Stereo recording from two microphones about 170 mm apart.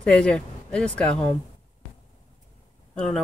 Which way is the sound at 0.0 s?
5° left (ahead or behind).